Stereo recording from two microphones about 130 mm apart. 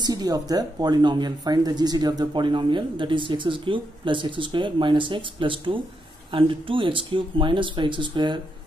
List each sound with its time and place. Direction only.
0.0 s speech: 30° right (ahead or behind)